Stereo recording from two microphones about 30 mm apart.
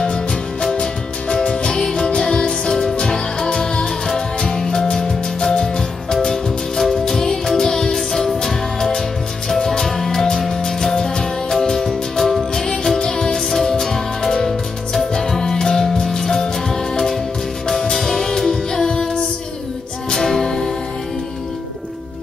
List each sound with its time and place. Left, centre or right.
0.0 s music: left
1.7 s music: left
6.8 s music: centre
17.6 s music: left
20.1 s music: centre